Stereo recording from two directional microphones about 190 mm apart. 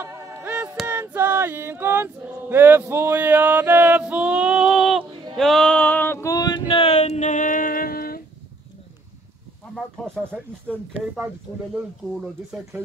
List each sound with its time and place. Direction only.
0.0 s music: 15° right (ahead or behind)
5.3 s male singing: centre (ahead or behind); by 6.6 s 20° left (ahead or behind)
6.7 s female singing: 30° left (ahead or behind); by 8.2 s 50° left (ahead or behind)
10.0 s speech: 5° left (ahead or behind)